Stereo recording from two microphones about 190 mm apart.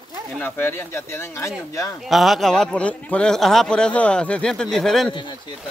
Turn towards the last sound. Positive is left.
turn(degrees=25)  # may be behind; listen again after turning